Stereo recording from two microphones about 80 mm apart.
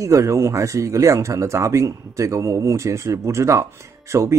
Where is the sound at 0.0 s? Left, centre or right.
Right.